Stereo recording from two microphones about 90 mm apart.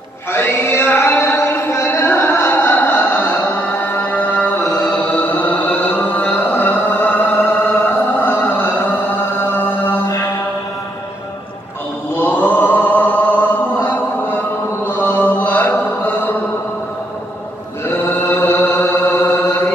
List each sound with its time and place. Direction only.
0.3 s chant: 25° left (ahead or behind)
4.6 s music: 15° left (ahead or behind)
9.5 s chant: 25° left (ahead or behind)
12.2 s chant: 20° left (ahead or behind)
14.9 s a sound: 20° left (ahead or behind)
17.8 s chant: 25° left (ahead or behind)